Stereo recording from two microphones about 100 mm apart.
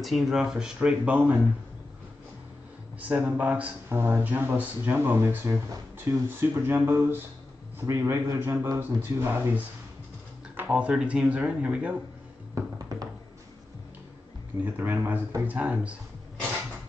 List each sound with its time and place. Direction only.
0.0 s speech: centre (ahead or behind)
3.0 s a man's voice: 15° right (ahead or behind)
14.6 s speech: 20° right (ahead or behind)